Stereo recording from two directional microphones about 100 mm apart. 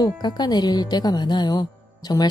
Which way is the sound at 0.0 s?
45° left (ahead or behind).